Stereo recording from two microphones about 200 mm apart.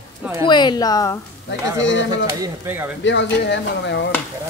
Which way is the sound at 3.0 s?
65° left (ahead or behind).